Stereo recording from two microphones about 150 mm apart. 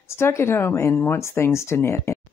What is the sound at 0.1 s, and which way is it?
Speech, 15° left (ahead or behind).